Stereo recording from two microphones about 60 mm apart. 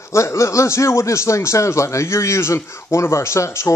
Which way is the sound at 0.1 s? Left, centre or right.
Left.